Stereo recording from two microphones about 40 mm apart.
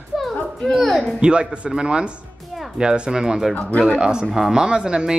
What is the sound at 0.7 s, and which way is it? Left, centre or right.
Speech, centre.